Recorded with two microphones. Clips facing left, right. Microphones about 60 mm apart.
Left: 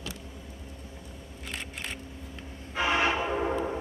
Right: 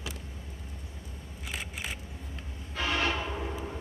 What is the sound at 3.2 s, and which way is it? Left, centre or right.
Train, left.